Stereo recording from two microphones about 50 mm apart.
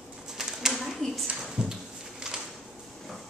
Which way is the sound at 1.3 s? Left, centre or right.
Centre.